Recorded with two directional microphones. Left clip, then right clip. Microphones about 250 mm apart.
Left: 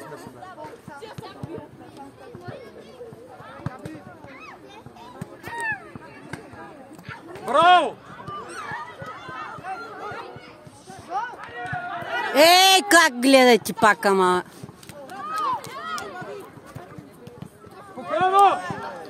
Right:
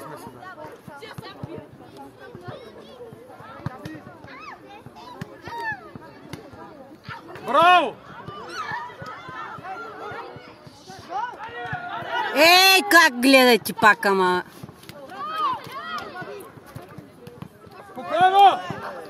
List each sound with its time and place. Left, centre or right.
5.4 s a sound: centre
7.4 s speech: right
8.5 s a sound: centre
9.0 s run: left
11.1 s basketball bounce: left
12.1 s chatter: left
12.4 s speech: centre
15.3 s run: left
17.9 s a sound: right
18.6 s run: left